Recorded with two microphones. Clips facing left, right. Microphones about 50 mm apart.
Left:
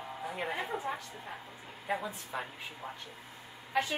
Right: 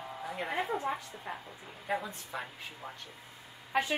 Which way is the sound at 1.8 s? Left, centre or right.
Centre.